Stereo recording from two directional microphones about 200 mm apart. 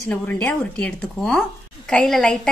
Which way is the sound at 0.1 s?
5° left (ahead or behind).